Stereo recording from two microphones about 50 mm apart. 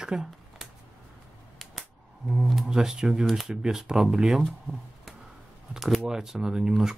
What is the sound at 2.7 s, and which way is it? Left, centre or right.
Speech, centre.